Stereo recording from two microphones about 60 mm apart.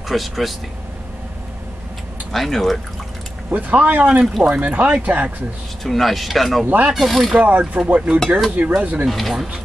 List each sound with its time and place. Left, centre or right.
0.1 s speech: centre
2.3 s speech: centre
3.4 s speech: right
5.9 s speech: centre
6.6 s mechanisms: right
6.9 s speech: centre
7.3 s speech: right
9.0 s speech: centre